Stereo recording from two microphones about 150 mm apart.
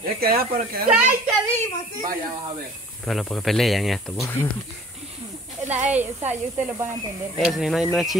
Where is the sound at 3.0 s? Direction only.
5° left (ahead or behind).